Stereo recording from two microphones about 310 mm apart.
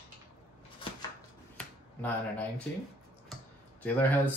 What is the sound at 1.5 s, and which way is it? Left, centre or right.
Finger snapping, centre.